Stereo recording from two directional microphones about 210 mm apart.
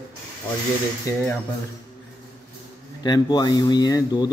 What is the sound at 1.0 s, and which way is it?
Speech, 10° left (ahead or behind).